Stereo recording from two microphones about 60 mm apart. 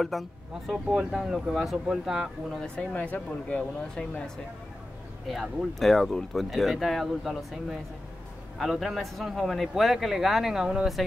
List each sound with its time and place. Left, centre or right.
0.1 s speech: centre
2.6 s speech: centre
5.3 s speech: centre